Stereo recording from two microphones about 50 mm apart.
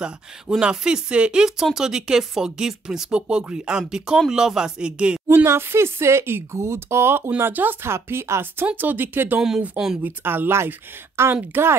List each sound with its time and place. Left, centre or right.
0.0 s speech: centre
5.3 s speech: right
8.7 s speech: right
11.2 s a woman's voice: right
11.5 s speech: right